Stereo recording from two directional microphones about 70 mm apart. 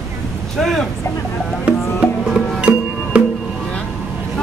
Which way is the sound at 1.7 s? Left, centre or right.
Centre.